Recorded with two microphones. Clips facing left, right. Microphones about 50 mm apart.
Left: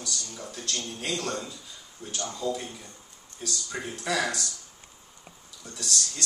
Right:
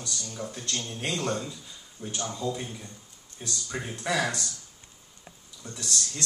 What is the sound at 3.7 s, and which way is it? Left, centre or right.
Speech, centre.